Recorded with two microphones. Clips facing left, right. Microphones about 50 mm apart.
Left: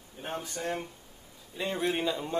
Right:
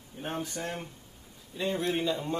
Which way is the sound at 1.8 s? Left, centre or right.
Centre.